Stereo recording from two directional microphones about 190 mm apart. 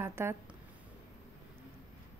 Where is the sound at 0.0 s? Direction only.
15° right (ahead or behind).